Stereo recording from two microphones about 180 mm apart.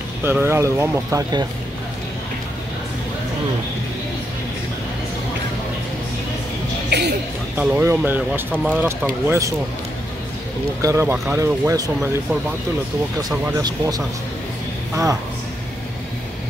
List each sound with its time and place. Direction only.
0.2 s speech: 10° right (ahead or behind)
6.9 s speech: 65° right (ahead or behind)
7.5 s speech: 10° right (ahead or behind)
10.8 s speech: 15° right (ahead or behind)
13.6 s speech: 20° right (ahead or behind)